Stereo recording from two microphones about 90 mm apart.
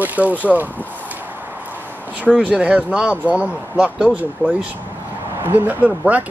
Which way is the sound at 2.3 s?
15° right (ahead or behind).